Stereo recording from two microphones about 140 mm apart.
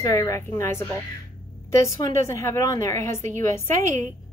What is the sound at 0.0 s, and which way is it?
A woman's voice, 20° left (ahead or behind).